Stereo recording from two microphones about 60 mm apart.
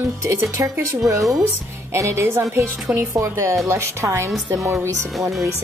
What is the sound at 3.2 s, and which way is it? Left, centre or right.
A woman's voice, right.